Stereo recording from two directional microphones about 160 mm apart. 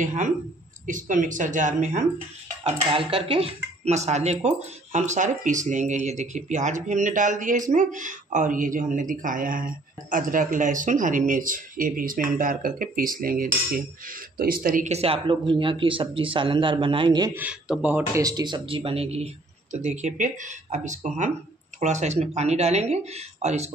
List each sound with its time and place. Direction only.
0.0 s speech: 50° right (ahead or behind)
2.6 s speech: 35° right (ahead or behind)
17.3 s speech: 10° right (ahead or behind)
18.2 s speech: 25° right (ahead or behind); by 23.7 s 45° right (ahead or behind)